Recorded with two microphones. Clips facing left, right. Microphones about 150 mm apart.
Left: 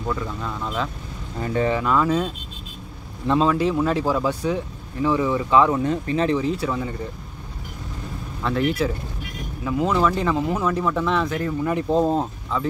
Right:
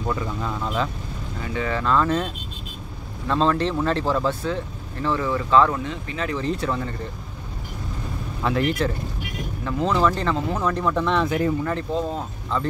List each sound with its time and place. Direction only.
0.0 s speech: 5° right (ahead or behind)
1.4 s speech: 40° left (ahead or behind)
1.7 s speech: 10° left (ahead or behind)
5.9 s speech: 35° left (ahead or behind)
6.3 s speech: 5° left (ahead or behind)
8.5 s speech: centre (ahead or behind)
11.2 s speech: 15° right (ahead or behind)
11.9 s speech: 40° left (ahead or behind)
12.5 s speech: 5° left (ahead or behind)